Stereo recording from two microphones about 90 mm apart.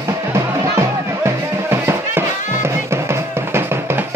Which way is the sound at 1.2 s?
25° right (ahead or behind).